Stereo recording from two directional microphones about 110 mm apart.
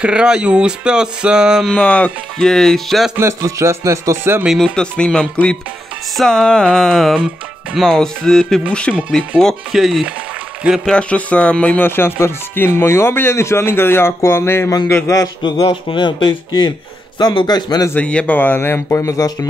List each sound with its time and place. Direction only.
0.0 s speech: 10° right (ahead or behind)
1.7 s speech: 10° left (ahead or behind)
3.2 s music: 25° right (ahead or behind)
4.7 s speech: 10° left (ahead or behind)
10.9 s speech: 10° left (ahead or behind); by 15.2 s 25° left (ahead or behind)
15.4 s a man's voice: 50° left (ahead or behind)
17.9 s speech: 10° left (ahead or behind); by 19.3 s 30° left (ahead or behind)